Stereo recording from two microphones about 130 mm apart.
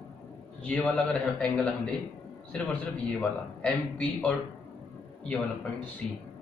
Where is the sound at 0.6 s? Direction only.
10° left (ahead or behind).